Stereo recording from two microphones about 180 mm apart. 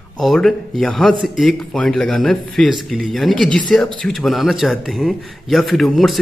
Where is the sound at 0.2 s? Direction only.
Centre (ahead or behind).